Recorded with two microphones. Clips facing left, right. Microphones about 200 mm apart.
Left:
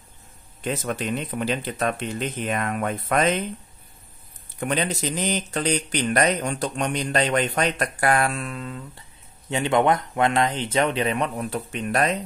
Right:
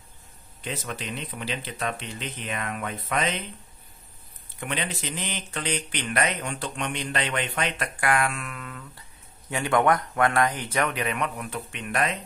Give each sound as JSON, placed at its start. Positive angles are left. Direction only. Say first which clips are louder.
{"t": 0.7, "sound": "speech", "louder": "left 7 dB", "side_deg": 50}
{"t": 4.6, "sound": "speech", "louder": "left 6 dB", "side_deg": 40}